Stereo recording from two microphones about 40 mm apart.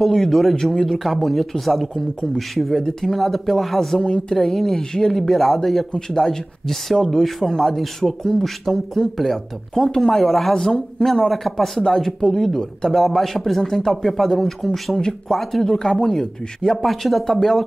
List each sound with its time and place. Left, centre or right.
0.0 s speech: centre
4.0 s speech: left
4.4 s speech: centre
5.9 s speech: centre
15.0 s speech: centre
15.3 s speech: centre